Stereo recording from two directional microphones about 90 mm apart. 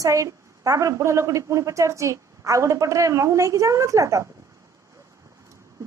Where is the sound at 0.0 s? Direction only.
35° right (ahead or behind).